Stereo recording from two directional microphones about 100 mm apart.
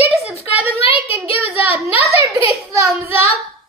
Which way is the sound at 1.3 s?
20° right (ahead or behind).